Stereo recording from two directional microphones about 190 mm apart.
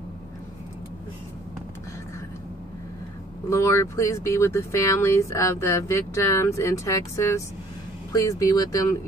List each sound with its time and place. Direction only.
3.4 s speech: 15° left (ahead or behind)